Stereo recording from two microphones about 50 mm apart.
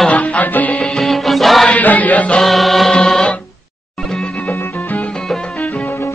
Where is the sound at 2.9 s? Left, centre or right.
Centre.